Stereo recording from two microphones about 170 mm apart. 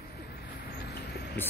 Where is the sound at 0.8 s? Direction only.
75° left (ahead or behind).